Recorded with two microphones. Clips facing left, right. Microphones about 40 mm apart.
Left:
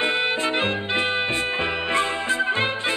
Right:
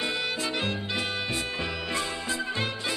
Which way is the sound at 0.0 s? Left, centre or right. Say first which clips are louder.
Left 7 dB; left.